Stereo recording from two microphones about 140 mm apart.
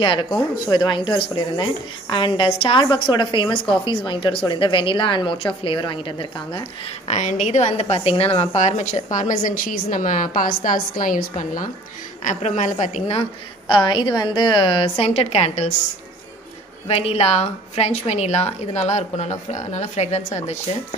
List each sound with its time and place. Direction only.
0.0 s speech: 35° left (ahead or behind)
7.1 s a woman's voice: 60° left (ahead or behind); by 11.7 s 75° left (ahead or behind)
12.2 s a woman's voice: 60° left (ahead or behind)
16.8 s a woman's voice: 45° left (ahead or behind)